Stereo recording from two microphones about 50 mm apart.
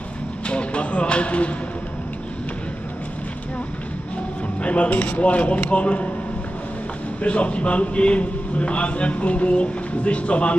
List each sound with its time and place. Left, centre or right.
0.5 s a sound: left
4.6 s a man's voice: left
7.2 s a man's voice: left